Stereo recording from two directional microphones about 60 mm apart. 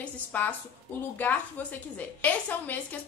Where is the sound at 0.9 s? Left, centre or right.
Left.